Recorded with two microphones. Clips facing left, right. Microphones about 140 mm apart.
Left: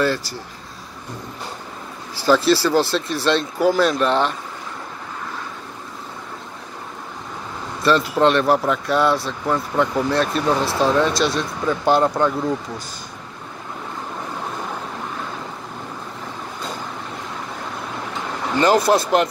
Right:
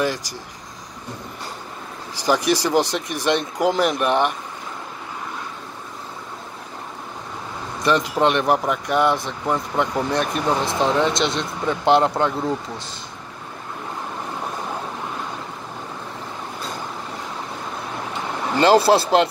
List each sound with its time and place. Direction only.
0.0 s speech: 15° right (ahead or behind)
2.1 s speech: 15° right (ahead or behind)
7.8 s speech: 15° right (ahead or behind)
18.6 s speech: 30° right (ahead or behind)